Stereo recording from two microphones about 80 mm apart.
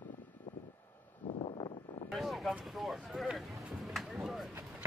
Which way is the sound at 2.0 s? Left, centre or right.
Centre.